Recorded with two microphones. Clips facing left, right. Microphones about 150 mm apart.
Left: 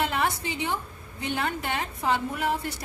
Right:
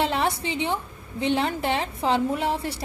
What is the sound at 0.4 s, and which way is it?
A woman's voice, 30° right (ahead or behind).